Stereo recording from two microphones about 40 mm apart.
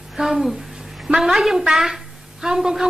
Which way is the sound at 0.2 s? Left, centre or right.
Centre.